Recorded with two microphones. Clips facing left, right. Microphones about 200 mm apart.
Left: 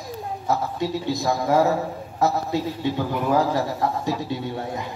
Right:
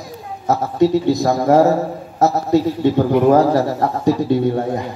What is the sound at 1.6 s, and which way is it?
A man's voice, 45° right (ahead or behind).